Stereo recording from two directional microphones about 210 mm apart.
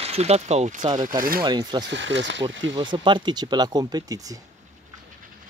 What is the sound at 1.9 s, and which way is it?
Speech, 60° right (ahead or behind).